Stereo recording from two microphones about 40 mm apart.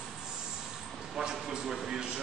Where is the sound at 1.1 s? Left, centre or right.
Centre.